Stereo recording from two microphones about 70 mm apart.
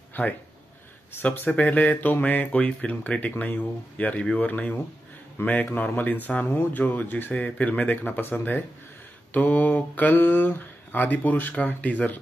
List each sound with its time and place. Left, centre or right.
0.2 s speech: left